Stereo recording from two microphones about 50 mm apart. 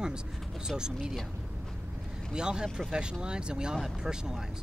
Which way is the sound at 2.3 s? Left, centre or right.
Centre.